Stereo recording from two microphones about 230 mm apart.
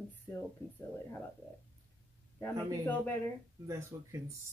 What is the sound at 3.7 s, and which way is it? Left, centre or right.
Cough, centre.